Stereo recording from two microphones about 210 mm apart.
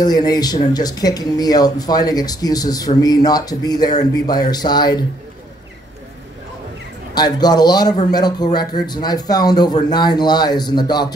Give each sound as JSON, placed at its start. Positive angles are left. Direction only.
{"t": 0.0, "sound": "speech", "side_deg": 20}
{"t": 7.2, "sound": "speech", "side_deg": 20}